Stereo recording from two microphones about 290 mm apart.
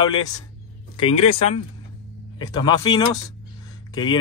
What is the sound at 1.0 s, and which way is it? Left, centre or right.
Speech, left.